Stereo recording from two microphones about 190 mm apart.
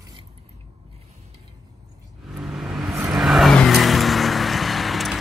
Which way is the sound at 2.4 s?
Centre (ahead or behind).